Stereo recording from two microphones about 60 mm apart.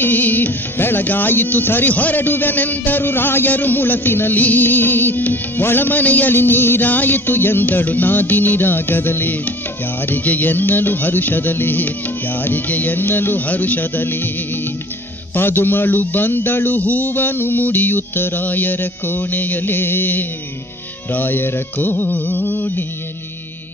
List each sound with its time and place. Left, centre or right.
0.0 s music: left
15.3 s music: left